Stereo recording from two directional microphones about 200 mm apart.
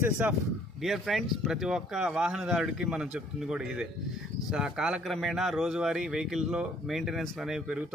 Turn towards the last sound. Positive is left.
turn(degrees=-5)  # may be behind; listen again after turning